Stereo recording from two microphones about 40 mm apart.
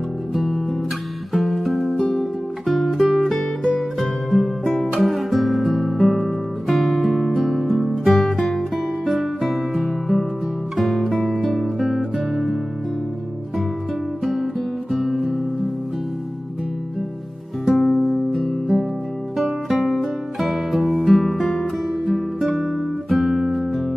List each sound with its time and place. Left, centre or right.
0.3 s music: centre
14.2 s music: centre
17.6 s music: centre
21.4 s music: centre
22.0 s music: centre
22.6 s guitar: centre